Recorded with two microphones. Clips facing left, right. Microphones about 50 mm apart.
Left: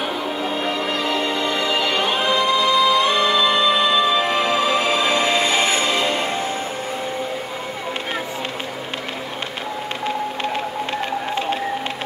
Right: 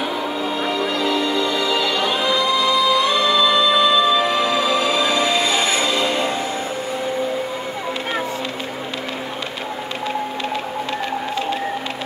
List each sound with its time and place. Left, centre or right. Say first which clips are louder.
0.4 s music: right 2 dB; left